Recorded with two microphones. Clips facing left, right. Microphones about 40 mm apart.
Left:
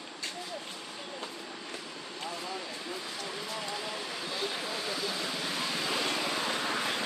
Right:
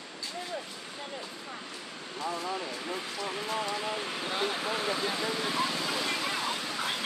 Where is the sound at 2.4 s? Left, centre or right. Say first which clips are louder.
Right 4 dB; right.